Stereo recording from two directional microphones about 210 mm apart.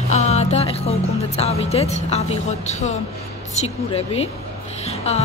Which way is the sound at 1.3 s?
30° left (ahead or behind).